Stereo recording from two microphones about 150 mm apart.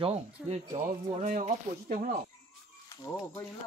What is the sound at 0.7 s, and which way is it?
Speech, 55° right (ahead or behind).